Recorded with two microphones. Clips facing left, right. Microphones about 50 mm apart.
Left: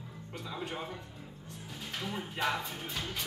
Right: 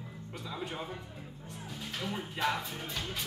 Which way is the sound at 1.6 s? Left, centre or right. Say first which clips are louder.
Right 1 dB; centre.